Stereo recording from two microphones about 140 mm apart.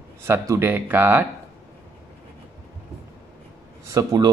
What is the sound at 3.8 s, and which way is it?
Speech, 25° right (ahead or behind).